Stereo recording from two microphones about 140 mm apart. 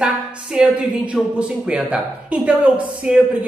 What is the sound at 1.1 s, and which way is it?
A woman's voice, 5° right (ahead or behind).